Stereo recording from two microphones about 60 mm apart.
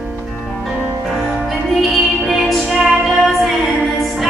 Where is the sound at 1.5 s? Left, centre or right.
Centre.